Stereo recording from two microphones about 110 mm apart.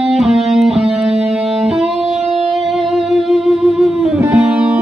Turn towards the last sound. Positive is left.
turn(degrees=-15)  # may be behind; listen again after turning